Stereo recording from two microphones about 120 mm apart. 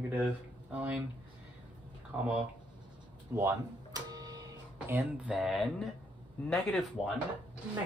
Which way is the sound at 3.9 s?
30° right (ahead or behind).